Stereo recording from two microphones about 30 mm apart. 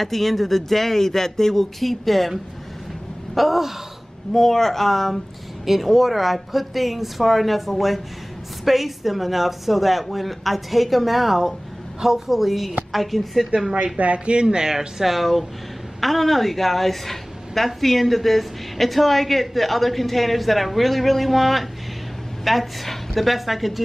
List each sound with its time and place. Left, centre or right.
0.0 s speech: centre
1.8 s a woman's voice: centre
4.3 s a woman's voice: centre
13.9 s speech: right; by 15.0 s centre
15.0 s a woman's voice: centre